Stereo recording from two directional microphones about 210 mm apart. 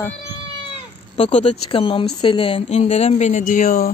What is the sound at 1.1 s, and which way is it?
Speech, 30° left (ahead or behind).